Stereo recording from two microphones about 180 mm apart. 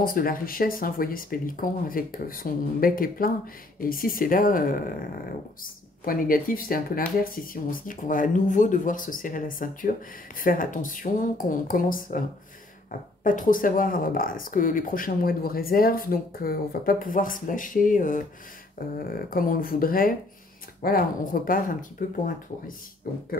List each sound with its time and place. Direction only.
0.0 s speech: 50° left (ahead or behind)
13.2 s speech: 50° left (ahead or behind)